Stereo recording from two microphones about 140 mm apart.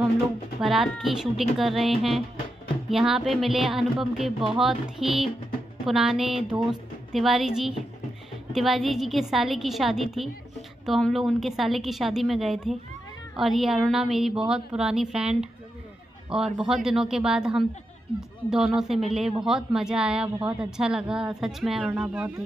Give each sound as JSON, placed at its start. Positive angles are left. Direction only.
{"t": 0.6, "sound": "a woman's voice", "side_deg": 0}